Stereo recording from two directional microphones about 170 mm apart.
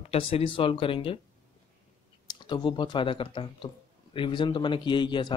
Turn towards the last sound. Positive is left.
turn(degrees=25)  # may be behind; listen again after turning